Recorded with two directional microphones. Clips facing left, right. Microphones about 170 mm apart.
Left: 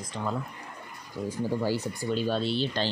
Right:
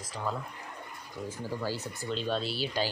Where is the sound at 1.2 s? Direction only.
15° left (ahead or behind); by 2.9 s 10° right (ahead or behind).